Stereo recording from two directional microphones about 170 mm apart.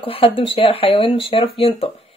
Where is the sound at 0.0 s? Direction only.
35° left (ahead or behind).